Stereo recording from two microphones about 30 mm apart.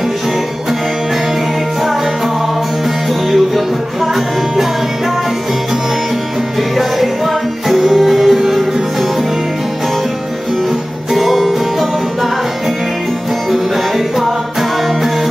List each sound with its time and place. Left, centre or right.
3.3 s music: centre
6.8 s music: centre
11.1 s music: centre